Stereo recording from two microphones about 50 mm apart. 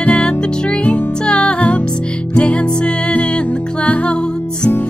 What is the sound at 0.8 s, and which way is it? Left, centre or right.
Music, left.